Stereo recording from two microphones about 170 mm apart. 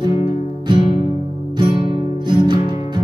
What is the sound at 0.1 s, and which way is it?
Music, 35° left (ahead or behind).